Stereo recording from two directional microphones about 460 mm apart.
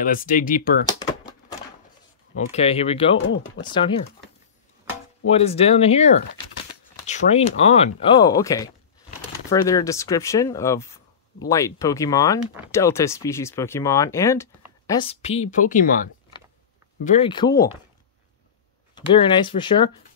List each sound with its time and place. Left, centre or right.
0.0 s speech: centre
2.5 s speech: centre
3.3 s speech: left
5.3 s speech: centre
18.9 s speech: centre